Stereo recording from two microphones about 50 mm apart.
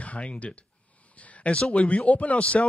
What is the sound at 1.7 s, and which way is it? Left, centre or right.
Speech, left.